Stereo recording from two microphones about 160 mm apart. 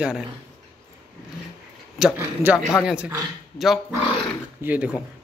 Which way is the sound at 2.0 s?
5° right (ahead or behind).